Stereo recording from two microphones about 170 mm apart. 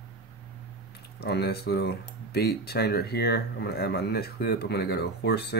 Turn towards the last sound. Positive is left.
turn(degrees=80)